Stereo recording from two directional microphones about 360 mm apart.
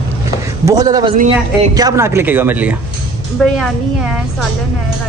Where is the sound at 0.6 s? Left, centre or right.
Centre.